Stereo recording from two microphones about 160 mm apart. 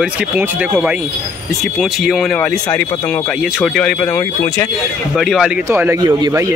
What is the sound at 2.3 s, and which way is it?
Speech, 15° left (ahead or behind).